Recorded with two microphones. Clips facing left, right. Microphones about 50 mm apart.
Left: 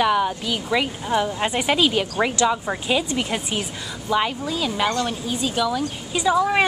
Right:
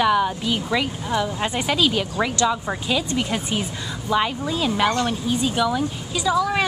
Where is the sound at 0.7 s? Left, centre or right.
Centre.